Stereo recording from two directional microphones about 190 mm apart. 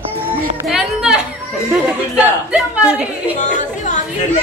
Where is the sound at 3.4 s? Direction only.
40° left (ahead or behind).